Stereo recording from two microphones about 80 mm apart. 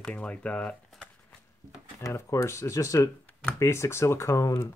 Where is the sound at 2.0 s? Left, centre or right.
Left.